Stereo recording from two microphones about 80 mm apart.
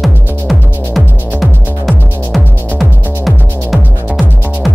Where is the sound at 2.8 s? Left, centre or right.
Centre.